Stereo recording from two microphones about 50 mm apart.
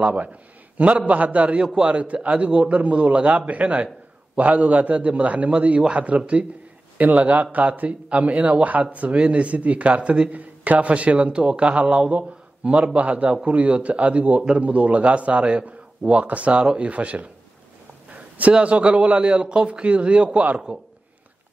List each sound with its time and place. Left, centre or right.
0.0 s a man's voice: right
10.3 s a man's voice: right